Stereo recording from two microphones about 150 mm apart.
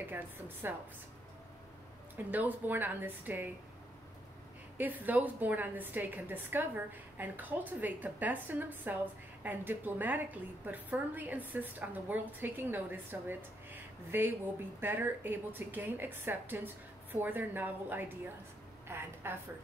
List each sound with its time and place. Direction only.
0.1 s a woman's voice: 15° right (ahead or behind)
2.3 s a woman's voice: 10° right (ahead or behind)
4.7 s a woman's voice: 10° right (ahead or behind)